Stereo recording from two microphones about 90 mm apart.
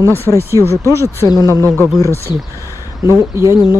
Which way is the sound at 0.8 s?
35° right (ahead or behind).